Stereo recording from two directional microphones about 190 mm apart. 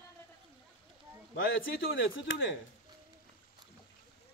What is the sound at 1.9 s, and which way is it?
Speech, 80° left.